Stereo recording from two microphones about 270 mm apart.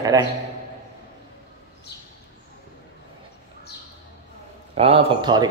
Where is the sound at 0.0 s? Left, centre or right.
Centre.